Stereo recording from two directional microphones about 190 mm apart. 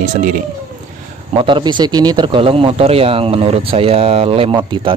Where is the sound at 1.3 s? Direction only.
25° right (ahead or behind).